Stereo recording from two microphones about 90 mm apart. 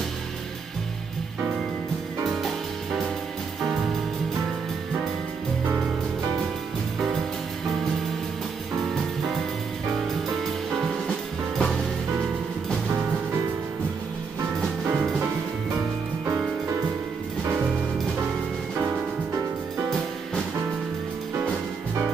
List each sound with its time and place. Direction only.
14.9 s music: 20° right (ahead or behind)